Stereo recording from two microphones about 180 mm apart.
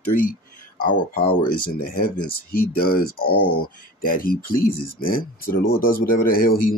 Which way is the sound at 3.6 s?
50° left (ahead or behind).